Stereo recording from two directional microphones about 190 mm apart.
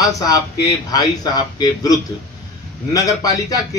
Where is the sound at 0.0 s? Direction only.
20° left (ahead or behind).